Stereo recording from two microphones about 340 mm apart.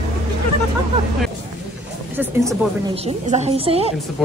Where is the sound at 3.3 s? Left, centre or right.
Centre.